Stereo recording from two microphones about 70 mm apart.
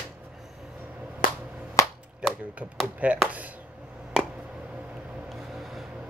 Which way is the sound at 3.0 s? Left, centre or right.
Centre.